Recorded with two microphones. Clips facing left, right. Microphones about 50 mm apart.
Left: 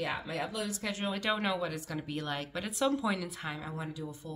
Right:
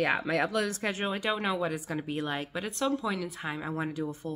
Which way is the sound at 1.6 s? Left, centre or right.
Right.